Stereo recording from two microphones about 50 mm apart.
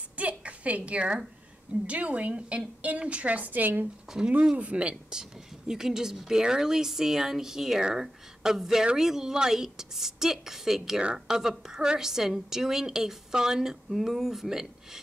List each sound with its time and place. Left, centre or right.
0.2 s a sound: right
1.9 s a woman's voice: right
5.7 s a woman's voice: centre